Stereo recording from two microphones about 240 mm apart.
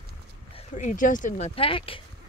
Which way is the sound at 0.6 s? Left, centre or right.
Left.